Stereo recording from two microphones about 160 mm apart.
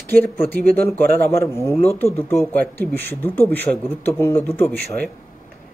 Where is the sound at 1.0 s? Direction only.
70° right (ahead or behind).